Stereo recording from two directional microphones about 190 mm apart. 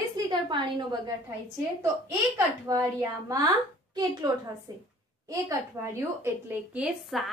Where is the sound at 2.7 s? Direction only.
20° right (ahead or behind).